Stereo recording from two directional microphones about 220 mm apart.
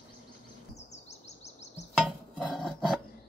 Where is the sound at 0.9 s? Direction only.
30° left (ahead or behind).